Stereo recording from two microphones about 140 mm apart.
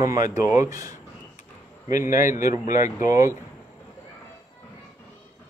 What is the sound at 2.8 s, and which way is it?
Speech, 70° left (ahead or behind).